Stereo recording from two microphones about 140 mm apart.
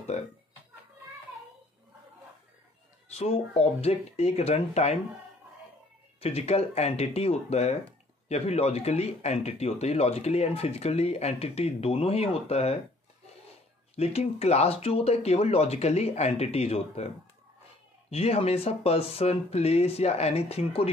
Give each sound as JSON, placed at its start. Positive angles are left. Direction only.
{"t": 3.1, "sound": "speech", "side_deg": 45}
{"t": 6.2, "sound": "speech", "side_deg": 50}
{"t": 13.9, "sound": "speech", "side_deg": 50}
{"t": 18.1, "sound": "speech", "side_deg": 45}